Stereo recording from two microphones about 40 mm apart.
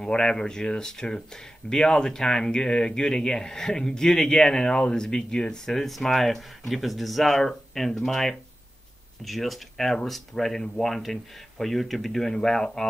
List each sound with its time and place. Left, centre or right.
0.0 s speech: left
5.7 s speech: centre